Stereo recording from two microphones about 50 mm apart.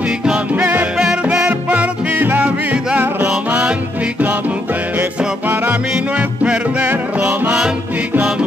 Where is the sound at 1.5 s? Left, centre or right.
Right.